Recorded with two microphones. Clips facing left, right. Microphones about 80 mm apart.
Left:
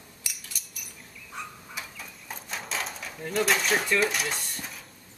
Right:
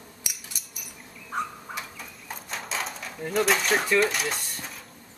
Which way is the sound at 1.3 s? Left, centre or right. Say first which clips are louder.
Right 9 dB; right.